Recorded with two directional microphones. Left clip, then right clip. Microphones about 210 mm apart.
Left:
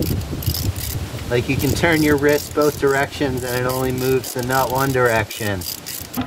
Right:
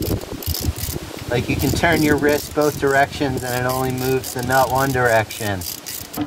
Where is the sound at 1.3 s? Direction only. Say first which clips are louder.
Left 1 dB; 30° right (ahead or behind).